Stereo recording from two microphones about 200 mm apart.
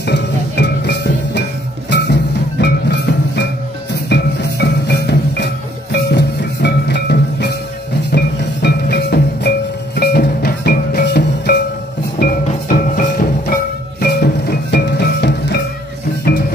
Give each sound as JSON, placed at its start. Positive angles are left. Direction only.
{"t": 0.0, "sound": "music", "side_deg": 55}
{"t": 8.6, "sound": "music", "side_deg": 55}
{"t": 12.4, "sound": "music", "side_deg": 40}